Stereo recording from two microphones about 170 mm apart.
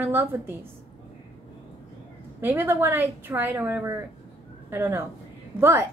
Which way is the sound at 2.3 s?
15° right (ahead or behind).